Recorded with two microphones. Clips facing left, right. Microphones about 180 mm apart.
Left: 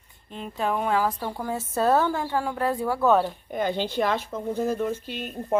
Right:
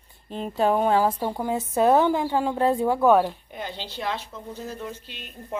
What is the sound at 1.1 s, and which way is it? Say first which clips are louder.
A woman's voice: right 4 dB; 20° right (ahead or behind).